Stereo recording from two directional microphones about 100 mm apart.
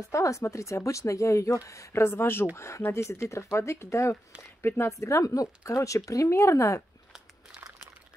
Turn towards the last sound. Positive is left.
turn(degrees=-5)  # may be behind; listen again after turning